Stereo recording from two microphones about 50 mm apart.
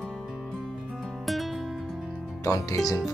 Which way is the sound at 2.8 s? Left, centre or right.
Centre.